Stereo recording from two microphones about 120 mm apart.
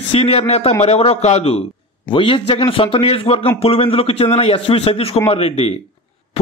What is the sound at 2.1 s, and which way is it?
Speech, 45° left (ahead or behind).